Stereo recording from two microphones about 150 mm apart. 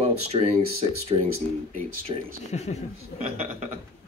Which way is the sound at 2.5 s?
45° left (ahead or behind).